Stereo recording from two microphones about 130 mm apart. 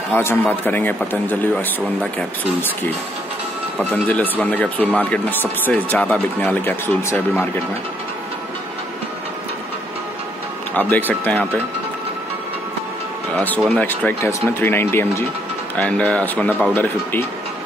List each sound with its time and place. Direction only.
0.1 s speech: 15° left (ahead or behind)
3.9 s speech: 10° left (ahead or behind)
10.7 s speech: 15° left (ahead or behind)
13.7 s speech: 10° left (ahead or behind)